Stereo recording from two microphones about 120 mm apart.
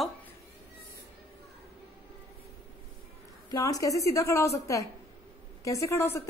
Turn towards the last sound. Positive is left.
turn(degrees=20)  # may be behind; listen again after turning